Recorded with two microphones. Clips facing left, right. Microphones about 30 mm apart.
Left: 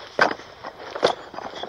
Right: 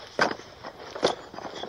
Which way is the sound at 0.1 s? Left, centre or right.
Centre.